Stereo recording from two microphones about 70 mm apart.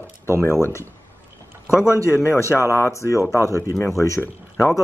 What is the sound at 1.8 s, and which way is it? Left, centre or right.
A man's voice, left.